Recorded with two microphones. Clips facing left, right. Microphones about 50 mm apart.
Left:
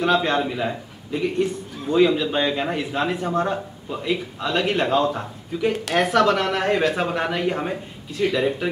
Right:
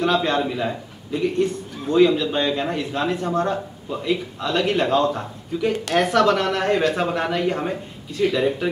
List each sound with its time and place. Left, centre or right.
0.0 s a man's voice: centre